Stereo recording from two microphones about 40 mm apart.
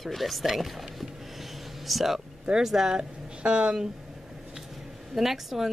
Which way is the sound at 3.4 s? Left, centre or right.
Right.